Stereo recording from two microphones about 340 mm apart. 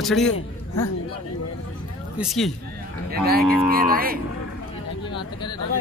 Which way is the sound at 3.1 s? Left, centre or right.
Right.